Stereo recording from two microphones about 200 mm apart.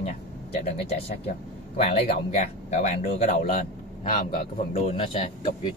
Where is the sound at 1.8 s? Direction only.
30° left (ahead or behind).